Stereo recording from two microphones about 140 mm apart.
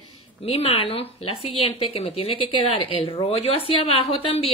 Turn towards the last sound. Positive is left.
turn(degrees=40)  # may be behind; listen again after turning